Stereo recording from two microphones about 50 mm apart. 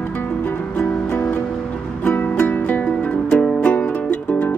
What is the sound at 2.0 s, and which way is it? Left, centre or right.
Music, left.